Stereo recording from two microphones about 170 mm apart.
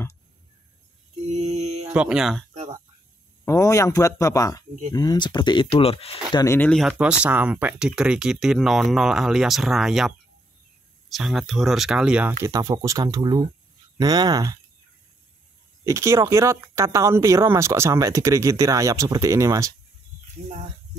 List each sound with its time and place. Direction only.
1.2 s a sound: 40° right (ahead or behind)
2.0 s speech: 5° right (ahead or behind)
2.5 s a sound: 45° right (ahead or behind)
3.4 s speech: 15° left (ahead or behind); by 6.1 s 35° left (ahead or behind)
6.3 s speech: 15° left (ahead or behind)
6.7 s speech: centre (ahead or behind)
12.4 s speech: 20° right (ahead or behind)
15.8 s speech: 15° right (ahead or behind)